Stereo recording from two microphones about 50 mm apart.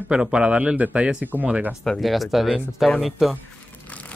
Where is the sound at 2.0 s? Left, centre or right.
Centre.